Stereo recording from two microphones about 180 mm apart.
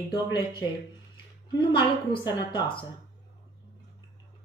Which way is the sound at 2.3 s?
25° left (ahead or behind).